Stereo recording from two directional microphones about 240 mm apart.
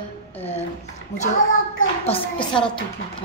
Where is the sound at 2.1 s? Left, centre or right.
Left.